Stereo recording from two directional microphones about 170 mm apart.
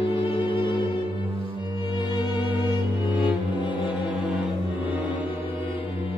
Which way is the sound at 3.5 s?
30° left (ahead or behind).